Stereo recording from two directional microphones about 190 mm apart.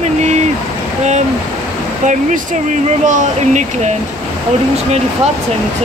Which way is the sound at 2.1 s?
40° right (ahead or behind).